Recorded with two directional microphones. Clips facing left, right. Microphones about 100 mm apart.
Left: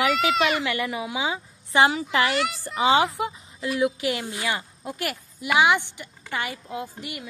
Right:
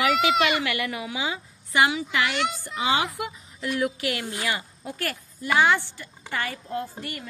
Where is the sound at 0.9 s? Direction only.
20° left (ahead or behind).